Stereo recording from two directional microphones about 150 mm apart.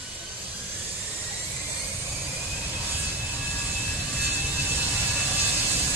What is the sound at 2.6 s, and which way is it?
Vehicle, 15° right (ahead or behind).